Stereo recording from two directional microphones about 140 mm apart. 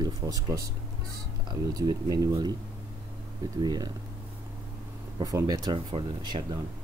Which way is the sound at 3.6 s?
30° right (ahead or behind).